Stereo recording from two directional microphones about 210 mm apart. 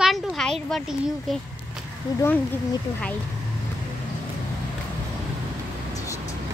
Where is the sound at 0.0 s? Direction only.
Centre (ahead or behind).